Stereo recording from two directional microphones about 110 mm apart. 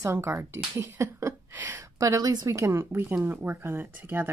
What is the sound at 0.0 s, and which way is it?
Speech, 25° right (ahead or behind).